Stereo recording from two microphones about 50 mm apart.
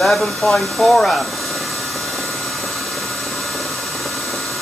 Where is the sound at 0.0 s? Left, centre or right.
Centre.